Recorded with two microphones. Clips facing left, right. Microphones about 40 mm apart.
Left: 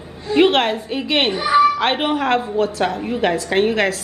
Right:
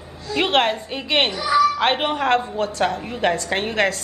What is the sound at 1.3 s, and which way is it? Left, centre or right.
Music, left.